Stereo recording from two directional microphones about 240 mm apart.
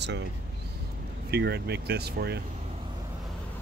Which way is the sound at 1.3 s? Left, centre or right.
Right.